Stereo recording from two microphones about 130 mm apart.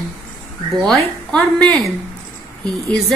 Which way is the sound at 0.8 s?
5° left (ahead or behind).